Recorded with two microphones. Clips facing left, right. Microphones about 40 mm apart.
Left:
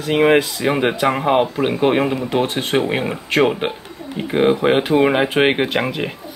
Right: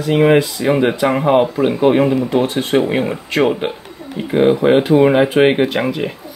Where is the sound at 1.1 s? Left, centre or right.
Centre.